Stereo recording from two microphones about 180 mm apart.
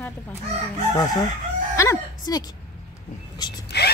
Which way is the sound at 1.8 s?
20° left (ahead or behind).